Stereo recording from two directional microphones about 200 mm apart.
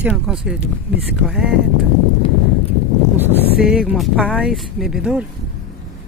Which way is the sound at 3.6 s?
5° right (ahead or behind).